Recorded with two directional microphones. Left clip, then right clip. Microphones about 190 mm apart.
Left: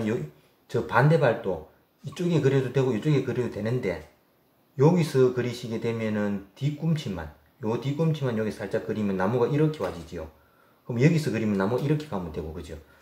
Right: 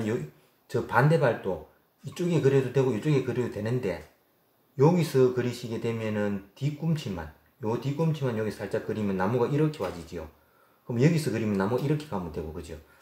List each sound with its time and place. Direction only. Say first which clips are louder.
0.7 s speech: left 2 dB; 15° right (ahead or behind)
10.9 s speech: left 1 dB; 15° right (ahead or behind)